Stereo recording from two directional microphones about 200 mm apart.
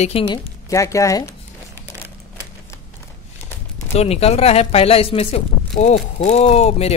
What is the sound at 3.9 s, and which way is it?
Speech, 30° left (ahead or behind).